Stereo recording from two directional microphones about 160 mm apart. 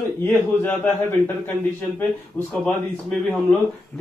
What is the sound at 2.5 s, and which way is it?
Speech, 5° left (ahead or behind).